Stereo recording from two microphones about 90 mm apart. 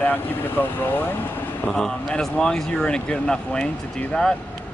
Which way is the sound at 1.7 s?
5° left (ahead or behind).